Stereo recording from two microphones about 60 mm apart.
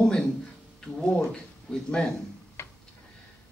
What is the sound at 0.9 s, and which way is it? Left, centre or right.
Speech, centre.